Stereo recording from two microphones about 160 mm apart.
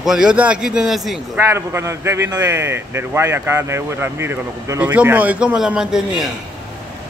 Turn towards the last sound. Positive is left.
turn(degrees=-5)  # may be behind; listen again after turning